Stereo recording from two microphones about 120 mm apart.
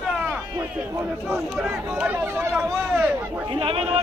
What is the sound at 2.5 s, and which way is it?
Speech, 10° right (ahead or behind).